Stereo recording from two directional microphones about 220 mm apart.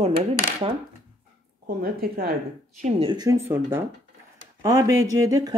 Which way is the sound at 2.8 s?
25° right (ahead or behind).